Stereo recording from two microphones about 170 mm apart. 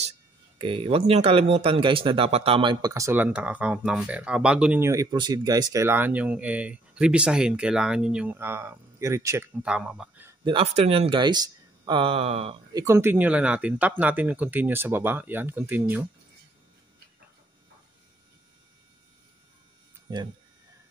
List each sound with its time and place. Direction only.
0.6 s speech: 30° right (ahead or behind); by 10.3 s 10° right (ahead or behind)
10.4 s speech: 30° right (ahead or behind)
12.7 s speech: 15° right (ahead or behind)